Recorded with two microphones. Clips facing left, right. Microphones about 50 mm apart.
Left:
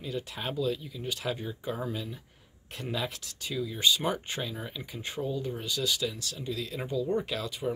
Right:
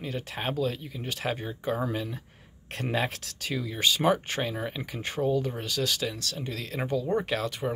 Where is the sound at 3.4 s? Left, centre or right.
Right.